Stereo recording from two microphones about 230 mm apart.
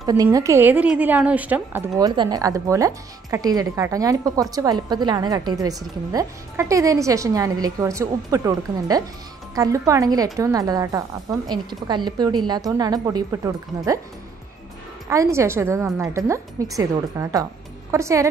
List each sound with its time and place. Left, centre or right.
0.0 s a woman's voice: centre
15.0 s a woman's voice: centre